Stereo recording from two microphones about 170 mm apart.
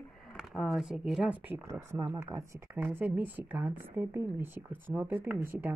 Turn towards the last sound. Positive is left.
turn(degrees=-10)  # may be behind; listen again after turning